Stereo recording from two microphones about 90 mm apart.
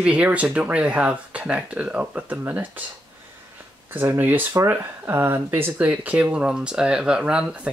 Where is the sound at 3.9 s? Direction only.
25° right (ahead or behind).